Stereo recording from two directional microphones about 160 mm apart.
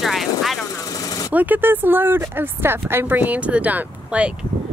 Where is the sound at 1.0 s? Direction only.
20° left (ahead or behind).